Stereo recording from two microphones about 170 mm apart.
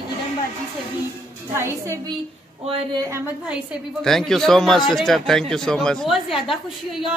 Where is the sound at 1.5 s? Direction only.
15° right (ahead or behind).